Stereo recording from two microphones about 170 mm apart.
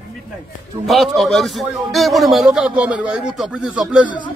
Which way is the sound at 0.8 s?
Centre (ahead or behind).